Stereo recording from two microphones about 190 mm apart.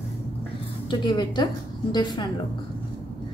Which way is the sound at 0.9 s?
25° left (ahead or behind).